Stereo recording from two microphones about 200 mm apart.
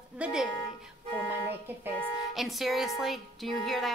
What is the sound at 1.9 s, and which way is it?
A woman's voice, centre (ahead or behind).